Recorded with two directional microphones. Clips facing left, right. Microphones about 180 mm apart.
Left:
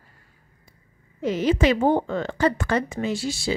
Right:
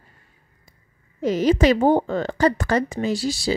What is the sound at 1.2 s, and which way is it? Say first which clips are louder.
A woman's voice: right 3 dB; 40° right (ahead or behind).